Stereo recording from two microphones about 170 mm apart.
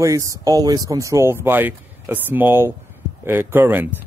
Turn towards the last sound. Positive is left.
turn(degrees=-10)  # may be behind; listen again after turning